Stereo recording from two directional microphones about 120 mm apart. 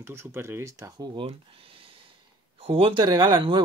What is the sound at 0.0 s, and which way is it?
Speech, 20° right (ahead or behind).